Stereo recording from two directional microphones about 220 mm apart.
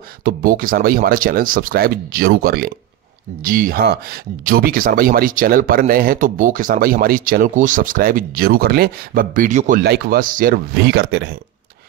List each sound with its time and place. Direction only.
0.2 s speech: 40° right (ahead or behind)